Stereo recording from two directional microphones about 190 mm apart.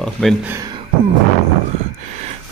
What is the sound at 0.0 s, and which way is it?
Speech, centre (ahead or behind).